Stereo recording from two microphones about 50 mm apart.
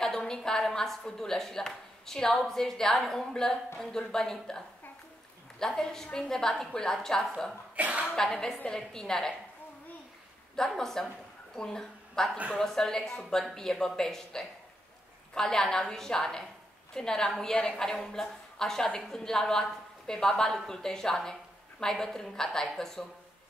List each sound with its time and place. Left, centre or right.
0.0 s a woman's voice: centre
7.7 s a woman's voice: right
8.2 s a woman's voice: centre
10.5 s a woman's voice: centre